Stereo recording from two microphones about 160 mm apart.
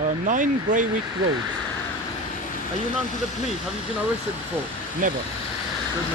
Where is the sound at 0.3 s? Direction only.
55° right (ahead or behind).